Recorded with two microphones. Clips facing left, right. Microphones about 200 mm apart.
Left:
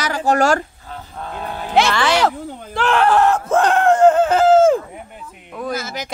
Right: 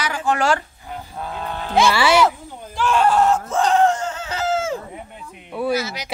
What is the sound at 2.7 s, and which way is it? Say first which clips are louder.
Screaming: left 2 dB; 65° left (ahead or behind).